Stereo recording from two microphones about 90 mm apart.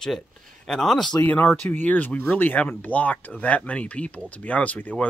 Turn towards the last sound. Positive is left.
turn(degrees=15)  # may be behind; listen again after turning